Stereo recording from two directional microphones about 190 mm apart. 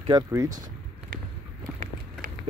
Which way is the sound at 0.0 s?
20° right (ahead or behind).